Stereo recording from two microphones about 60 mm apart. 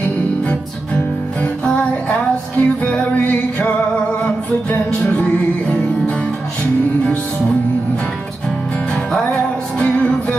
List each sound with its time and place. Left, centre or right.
0.5 s music: left
4.9 s music: centre
9.8 s music: centre